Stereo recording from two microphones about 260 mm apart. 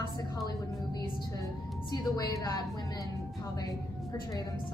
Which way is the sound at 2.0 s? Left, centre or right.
Centre.